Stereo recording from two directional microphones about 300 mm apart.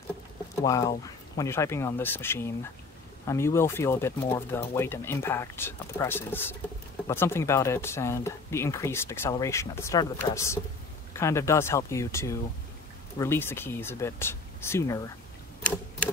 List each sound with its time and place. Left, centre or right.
0.7 s speech: centre